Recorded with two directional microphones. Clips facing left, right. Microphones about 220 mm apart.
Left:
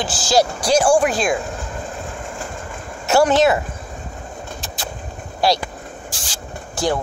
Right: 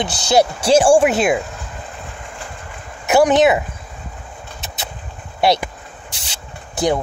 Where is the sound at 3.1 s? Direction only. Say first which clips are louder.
Right 2 dB; 15° right (ahead or behind).